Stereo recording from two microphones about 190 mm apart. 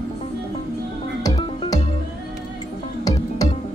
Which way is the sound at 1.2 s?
20° left (ahead or behind).